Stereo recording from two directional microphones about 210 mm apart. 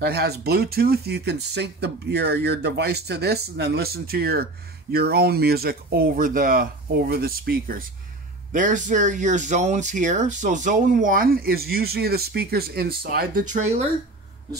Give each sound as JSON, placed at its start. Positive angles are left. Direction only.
{"t": 0.0, "sound": "speech", "side_deg": -50}